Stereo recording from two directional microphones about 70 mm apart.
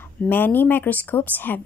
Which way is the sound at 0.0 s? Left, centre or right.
Left.